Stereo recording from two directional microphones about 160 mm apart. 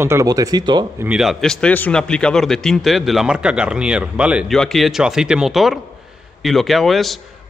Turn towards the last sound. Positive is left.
turn(degrees=0)  # may be behind; listen again after turning